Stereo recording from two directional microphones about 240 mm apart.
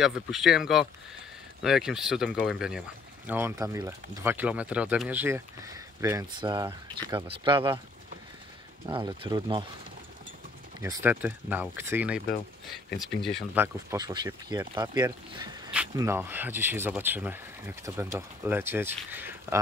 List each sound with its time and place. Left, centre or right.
0.0 s speech: centre; by 7.7 s right
8.9 s speech: centre
10.8 s speech: centre
13.8 s speech: centre